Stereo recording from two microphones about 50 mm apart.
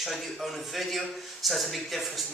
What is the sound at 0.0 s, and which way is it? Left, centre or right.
A man's voice, centre.